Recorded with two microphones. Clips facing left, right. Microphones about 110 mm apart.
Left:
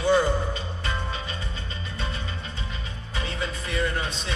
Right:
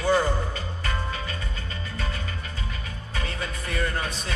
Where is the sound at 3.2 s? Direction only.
25° left (ahead or behind).